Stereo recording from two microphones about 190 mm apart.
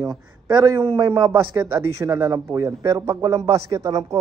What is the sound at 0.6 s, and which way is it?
Speech, 15° right (ahead or behind).